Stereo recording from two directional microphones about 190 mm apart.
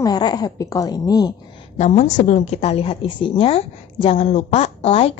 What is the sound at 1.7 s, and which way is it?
A woman's voice, 35° left (ahead or behind).